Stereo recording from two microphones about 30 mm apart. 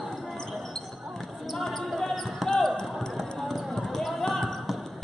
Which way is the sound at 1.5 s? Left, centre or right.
Centre.